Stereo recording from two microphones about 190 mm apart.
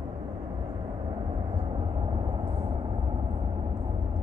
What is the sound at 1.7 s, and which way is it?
Vehicle, 25° right (ahead or behind).